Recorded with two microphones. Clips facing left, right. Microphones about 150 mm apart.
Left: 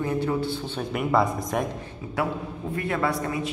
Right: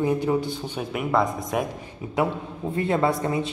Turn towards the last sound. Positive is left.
turn(degrees=-25)  # may be behind; listen again after turning